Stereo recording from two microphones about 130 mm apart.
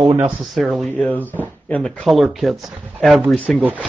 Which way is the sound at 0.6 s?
Centre (ahead or behind).